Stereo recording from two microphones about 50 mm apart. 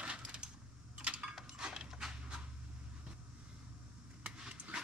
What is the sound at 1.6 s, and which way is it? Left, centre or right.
Dog, centre.